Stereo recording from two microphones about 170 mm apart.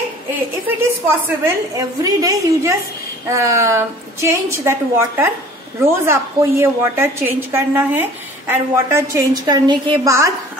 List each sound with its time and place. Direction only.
0.7 s a woman's voice: 15° right (ahead or behind)